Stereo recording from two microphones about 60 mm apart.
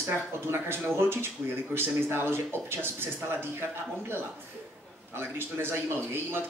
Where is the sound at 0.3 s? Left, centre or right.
Right.